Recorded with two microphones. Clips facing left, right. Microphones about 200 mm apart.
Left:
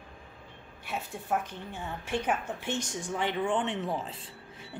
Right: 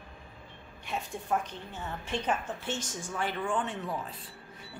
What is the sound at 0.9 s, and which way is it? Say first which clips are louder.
A woman's voice: even; 10° left (ahead or behind).